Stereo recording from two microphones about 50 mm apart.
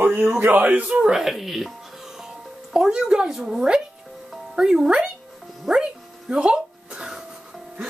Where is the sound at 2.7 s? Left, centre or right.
Centre.